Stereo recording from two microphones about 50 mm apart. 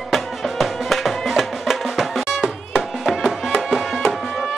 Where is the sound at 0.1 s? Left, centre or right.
Centre.